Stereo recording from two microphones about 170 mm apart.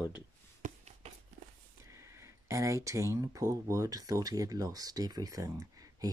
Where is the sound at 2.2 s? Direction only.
15° right (ahead or behind).